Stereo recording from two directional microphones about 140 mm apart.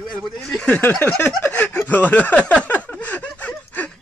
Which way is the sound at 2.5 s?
10° left (ahead or behind).